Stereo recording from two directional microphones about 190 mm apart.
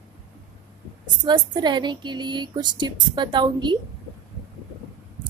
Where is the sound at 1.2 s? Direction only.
25° right (ahead or behind).